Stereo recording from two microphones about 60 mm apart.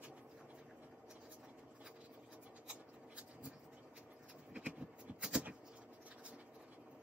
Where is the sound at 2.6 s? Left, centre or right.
Centre.